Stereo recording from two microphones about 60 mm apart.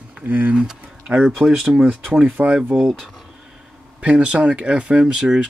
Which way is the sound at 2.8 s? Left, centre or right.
Centre.